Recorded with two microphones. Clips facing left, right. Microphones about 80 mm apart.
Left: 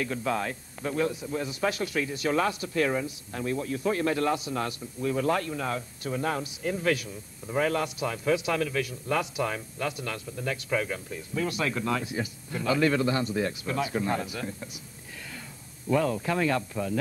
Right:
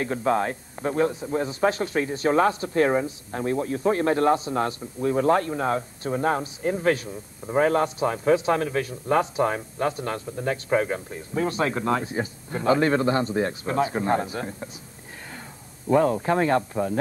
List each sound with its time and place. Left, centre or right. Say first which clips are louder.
0.0 s a man's voice: right 6 dB; right
15.9 s a man's voice: right 6 dB; right